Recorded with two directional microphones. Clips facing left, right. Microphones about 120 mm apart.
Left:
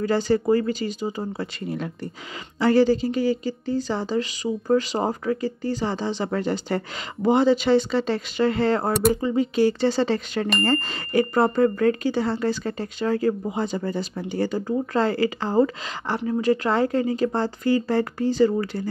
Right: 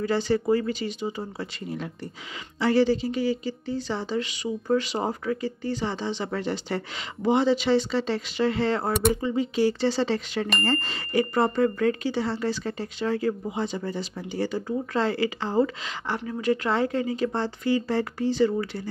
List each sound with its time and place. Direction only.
0.0 s speech: 45° left (ahead or behind)
2.6 s speech: 45° left (ahead or behind)